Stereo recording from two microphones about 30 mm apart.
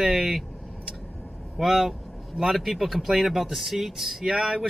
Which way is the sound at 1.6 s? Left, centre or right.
Centre.